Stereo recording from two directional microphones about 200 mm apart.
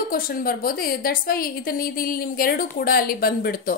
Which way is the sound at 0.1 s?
45° left (ahead or behind).